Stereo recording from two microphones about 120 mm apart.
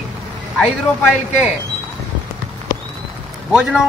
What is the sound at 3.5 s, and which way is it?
Speech, 5° right (ahead or behind).